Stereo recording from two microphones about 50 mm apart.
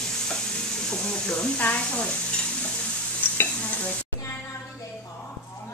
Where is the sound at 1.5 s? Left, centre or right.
Left.